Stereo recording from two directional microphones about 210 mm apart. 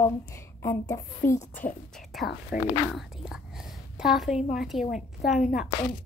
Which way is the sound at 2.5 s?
45° left (ahead or behind).